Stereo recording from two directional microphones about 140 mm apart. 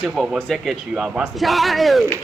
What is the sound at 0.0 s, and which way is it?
Speech, centre (ahead or behind).